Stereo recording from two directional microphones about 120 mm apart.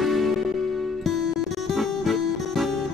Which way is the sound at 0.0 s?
Centre (ahead or behind).